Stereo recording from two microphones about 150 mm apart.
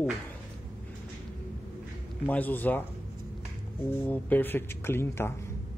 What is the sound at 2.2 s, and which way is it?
Speech, 10° left (ahead or behind).